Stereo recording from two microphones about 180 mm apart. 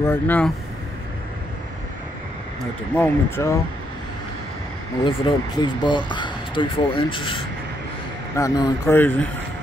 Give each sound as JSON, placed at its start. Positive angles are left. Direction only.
{"t": 0.0, "sound": "speech", "side_deg": 10}
{"t": 3.0, "sound": "speech", "side_deg": 15}
{"t": 5.0, "sound": "speech", "side_deg": 25}